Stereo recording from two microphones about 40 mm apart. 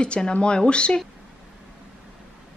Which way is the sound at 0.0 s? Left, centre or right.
Left.